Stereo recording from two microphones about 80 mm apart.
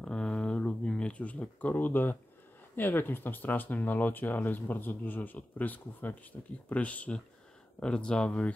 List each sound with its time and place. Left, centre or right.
0.0 s a sound: centre
2.7 s speech: left
6.7 s speech: centre